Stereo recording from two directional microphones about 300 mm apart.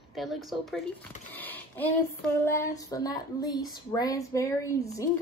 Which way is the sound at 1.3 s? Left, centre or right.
Centre.